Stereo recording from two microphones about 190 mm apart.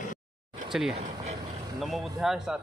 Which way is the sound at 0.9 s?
35° right (ahead or behind).